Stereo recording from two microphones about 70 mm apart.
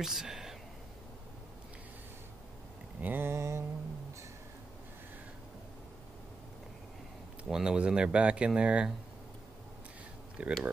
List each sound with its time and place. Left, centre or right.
0.0 s speech: centre
3.0 s a sound: right
7.4 s speech: centre
10.4 s speech: centre